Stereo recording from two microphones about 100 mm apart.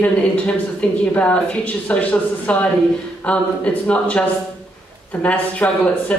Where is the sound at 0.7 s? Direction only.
15° left (ahead or behind).